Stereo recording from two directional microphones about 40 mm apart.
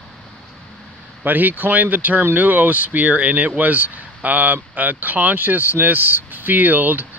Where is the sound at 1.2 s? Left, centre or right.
Right.